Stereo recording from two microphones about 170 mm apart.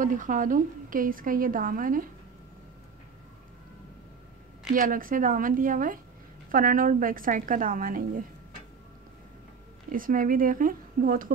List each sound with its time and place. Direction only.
0.0 s a woman's voice: 50° right (ahead or behind)
4.7 s a woman's voice: 55° right (ahead or behind)
9.8 s speech: 55° right (ahead or behind)